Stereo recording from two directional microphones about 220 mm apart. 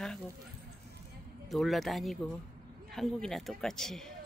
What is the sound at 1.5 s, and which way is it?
A man's voice, centre (ahead or behind).